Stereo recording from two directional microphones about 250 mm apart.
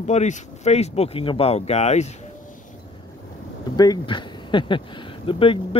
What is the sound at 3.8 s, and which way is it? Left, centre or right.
A man's voice, centre.